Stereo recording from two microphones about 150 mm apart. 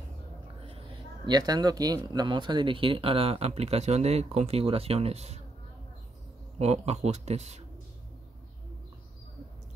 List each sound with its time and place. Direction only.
0.6 s speech: 40° right (ahead or behind)
6.6 s speech: 45° right (ahead or behind)